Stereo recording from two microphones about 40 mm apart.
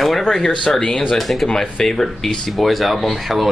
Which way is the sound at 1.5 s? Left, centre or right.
Centre.